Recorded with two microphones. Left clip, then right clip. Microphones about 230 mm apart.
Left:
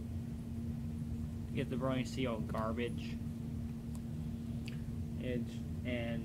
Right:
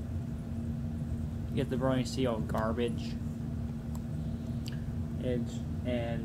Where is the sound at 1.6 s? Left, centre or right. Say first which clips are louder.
Right 6 dB; centre.